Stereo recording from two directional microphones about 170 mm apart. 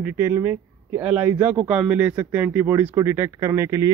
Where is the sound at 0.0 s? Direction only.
10° right (ahead or behind).